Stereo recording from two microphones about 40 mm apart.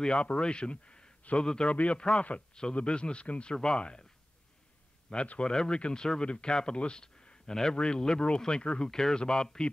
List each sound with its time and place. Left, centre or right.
0.0 s speech: left
1.7 s speech: left
5.1 s speech: left
5.4 s speech: centre